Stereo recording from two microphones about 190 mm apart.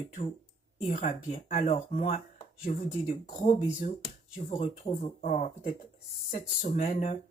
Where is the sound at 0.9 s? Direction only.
45° left (ahead or behind).